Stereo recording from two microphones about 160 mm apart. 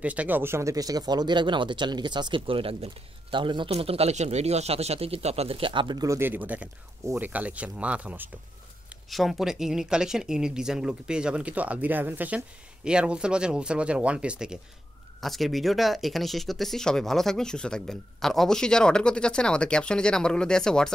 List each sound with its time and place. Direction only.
0.0 s speech: 10° right (ahead or behind)